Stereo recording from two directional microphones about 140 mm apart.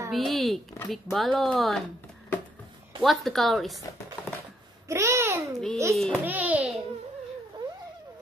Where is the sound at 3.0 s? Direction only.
Centre (ahead or behind).